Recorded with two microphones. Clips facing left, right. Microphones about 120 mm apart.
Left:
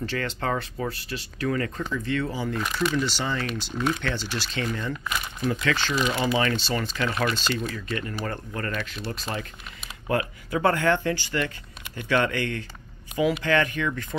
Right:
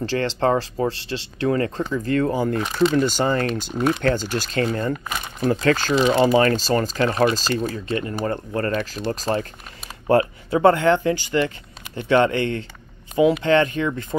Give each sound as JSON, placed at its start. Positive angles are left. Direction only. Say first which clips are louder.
{"t": 0.0, "sound": "speech", "louder": "right 8 dB", "side_deg": -30}
{"t": 2.0, "sound": "speech", "louder": "right 9 dB", "side_deg": -45}
{"t": 2.6, "sound": "speech", "louder": "right 5 dB", "side_deg": -25}
{"t": 3.0, "sound": "speech", "louder": "right 8 dB", "side_deg": -45}
{"t": 13.1, "sound": "speech", "louder": "right 7 dB", "side_deg": -40}
{"t": 13.4, "sound": "speech", "louder": "right 6 dB", "side_deg": -25}